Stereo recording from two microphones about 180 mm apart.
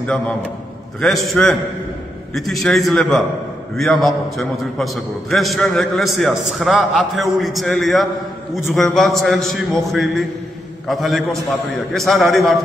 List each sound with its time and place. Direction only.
1.0 s a man's voice: centre (ahead or behind)